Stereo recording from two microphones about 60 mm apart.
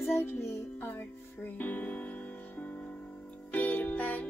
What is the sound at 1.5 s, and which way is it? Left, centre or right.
Speech, left.